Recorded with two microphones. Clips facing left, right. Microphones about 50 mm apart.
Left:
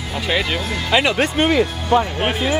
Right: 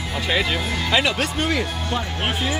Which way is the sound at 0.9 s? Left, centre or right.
Left.